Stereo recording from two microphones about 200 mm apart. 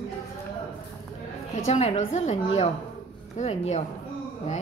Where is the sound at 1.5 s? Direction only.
30° left (ahead or behind).